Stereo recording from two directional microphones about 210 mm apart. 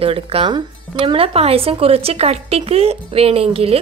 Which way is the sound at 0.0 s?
25° right (ahead or behind).